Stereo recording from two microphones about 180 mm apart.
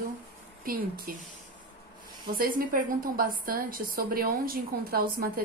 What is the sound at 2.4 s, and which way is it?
A woman's voice, 50° right (ahead or behind).